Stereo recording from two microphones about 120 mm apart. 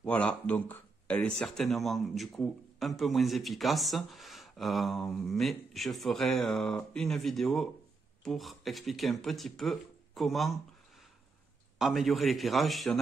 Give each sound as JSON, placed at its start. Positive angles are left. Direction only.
{"t": 0.0, "sound": "speech", "side_deg": 10}
{"t": 11.8, "sound": "speech", "side_deg": 0}